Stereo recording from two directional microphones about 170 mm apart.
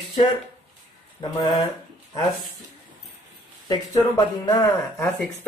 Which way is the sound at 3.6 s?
20° left (ahead or behind).